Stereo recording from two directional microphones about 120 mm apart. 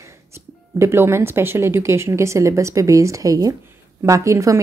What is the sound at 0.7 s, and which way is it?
Speech, 20° right (ahead or behind).